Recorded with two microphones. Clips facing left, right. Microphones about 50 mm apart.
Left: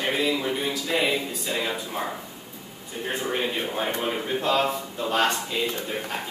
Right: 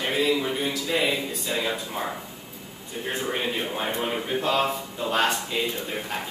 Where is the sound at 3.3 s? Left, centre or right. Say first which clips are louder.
Left 1 dB; centre.